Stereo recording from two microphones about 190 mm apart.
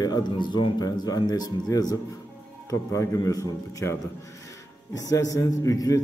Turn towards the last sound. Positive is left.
turn(degrees=20)  # may be behind; listen again after turning